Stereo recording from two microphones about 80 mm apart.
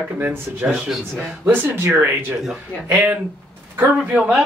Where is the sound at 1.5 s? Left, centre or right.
Right.